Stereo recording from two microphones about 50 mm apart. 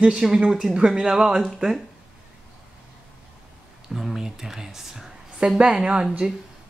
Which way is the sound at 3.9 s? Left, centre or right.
Centre.